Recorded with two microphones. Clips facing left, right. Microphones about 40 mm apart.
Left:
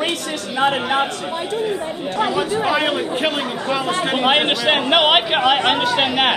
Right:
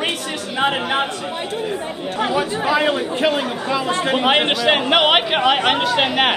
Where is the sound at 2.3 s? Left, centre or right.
Right.